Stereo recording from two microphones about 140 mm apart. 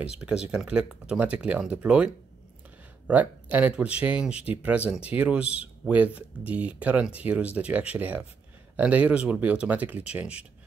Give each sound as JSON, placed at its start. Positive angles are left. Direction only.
{"t": 0.5, "sound": "speech", "side_deg": -5}